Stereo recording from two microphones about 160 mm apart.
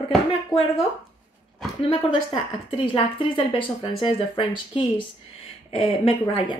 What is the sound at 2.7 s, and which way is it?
Speech, 35° left (ahead or behind).